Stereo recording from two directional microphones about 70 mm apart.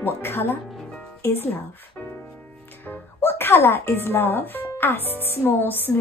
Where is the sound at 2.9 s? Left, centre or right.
Left.